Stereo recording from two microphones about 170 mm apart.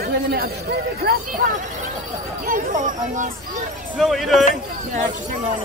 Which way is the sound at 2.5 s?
50° right (ahead or behind).